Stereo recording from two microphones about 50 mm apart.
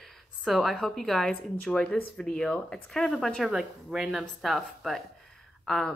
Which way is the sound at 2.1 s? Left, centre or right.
Left.